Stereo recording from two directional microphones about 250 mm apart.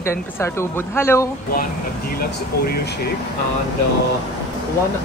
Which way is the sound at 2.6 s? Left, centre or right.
Left.